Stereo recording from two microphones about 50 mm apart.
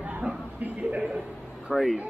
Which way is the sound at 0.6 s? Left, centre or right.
Right.